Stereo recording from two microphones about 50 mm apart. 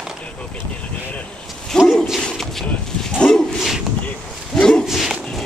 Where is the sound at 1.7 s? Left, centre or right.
Centre.